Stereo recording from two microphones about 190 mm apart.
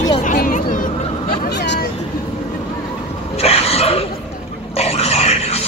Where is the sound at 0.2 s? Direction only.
40° left (ahead or behind).